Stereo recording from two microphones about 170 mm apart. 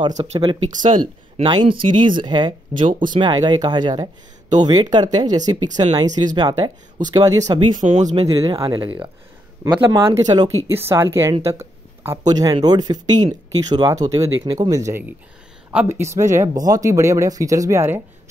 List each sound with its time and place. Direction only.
0.2 s speech: 30° right (ahead or behind)
7.8 s speech: 40° right (ahead or behind)
8.5 s speech: 25° right (ahead or behind)
11.4 s a sound: 15° right (ahead or behind)
12.3 s speech: 20° right (ahead or behind)